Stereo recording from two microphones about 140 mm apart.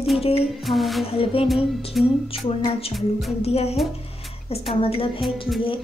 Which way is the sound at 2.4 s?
45° left (ahead or behind).